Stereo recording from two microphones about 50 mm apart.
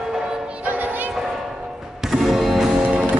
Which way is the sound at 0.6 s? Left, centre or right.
Right.